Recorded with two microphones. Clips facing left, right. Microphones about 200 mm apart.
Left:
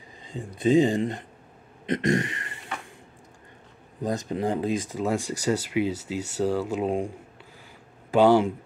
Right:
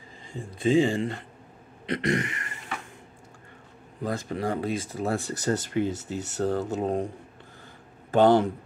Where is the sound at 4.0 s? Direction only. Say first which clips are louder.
Left 2 dB; 20° left (ahead or behind).